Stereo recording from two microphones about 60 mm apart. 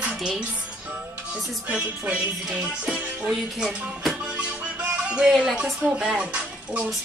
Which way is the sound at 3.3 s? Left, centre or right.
Centre.